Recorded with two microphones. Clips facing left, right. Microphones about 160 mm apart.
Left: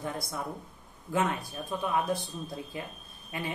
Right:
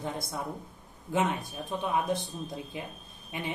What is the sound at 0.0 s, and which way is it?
Speech, 20° right (ahead or behind).